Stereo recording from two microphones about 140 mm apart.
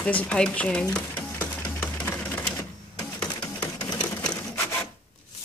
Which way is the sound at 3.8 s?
30° left (ahead or behind).